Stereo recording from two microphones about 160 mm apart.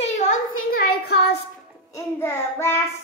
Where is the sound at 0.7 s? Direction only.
80° left.